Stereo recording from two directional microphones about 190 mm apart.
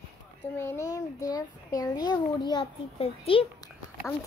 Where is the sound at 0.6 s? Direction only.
15° left (ahead or behind); by 3.4 s 30° left (ahead or behind).